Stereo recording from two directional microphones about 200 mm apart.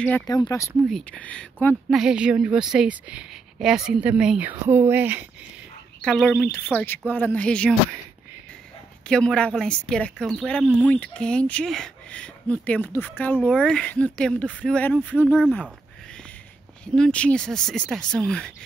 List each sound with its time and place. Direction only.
0.3 s speech: 20° left (ahead or behind)
0.8 s speech: 5° left (ahead or behind)
5.9 s speech: 5° left (ahead or behind)
9.0 s speech: 5° left (ahead or behind)
16.8 s speech: 5° left (ahead or behind)